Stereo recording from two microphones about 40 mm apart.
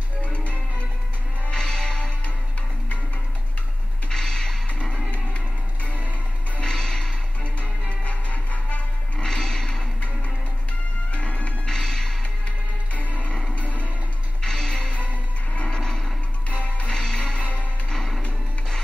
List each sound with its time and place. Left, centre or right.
0.2 s music: left
1.5 s music: centre
2.0 s music: left
4.1 s a sound: centre
6.6 s music: centre
7.6 s music: left
9.2 s music: centre
11.1 s music: left
11.6 s music: centre
13.6 s music: left
14.4 s music: centre
15.7 s a sound: centre
16.6 s music: left
16.9 s music: centre